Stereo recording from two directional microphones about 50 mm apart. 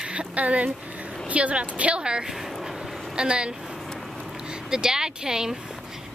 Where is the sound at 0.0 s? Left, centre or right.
Right.